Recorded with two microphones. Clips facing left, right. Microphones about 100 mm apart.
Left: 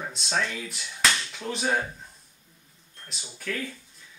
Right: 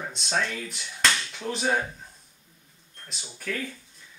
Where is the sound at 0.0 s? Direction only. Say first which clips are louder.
Even; centre (ahead or behind).